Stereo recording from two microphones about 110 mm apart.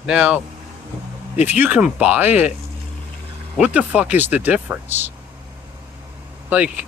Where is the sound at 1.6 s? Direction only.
10° right (ahead or behind).